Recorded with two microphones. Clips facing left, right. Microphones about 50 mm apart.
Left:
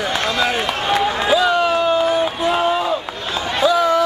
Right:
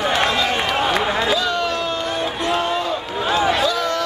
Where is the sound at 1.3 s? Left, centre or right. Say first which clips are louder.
Left 5 dB; centre.